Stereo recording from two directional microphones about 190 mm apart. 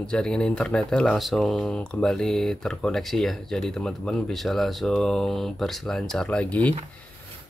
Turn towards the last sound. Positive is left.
turn(degrees=5)  # may be behind; listen again after turning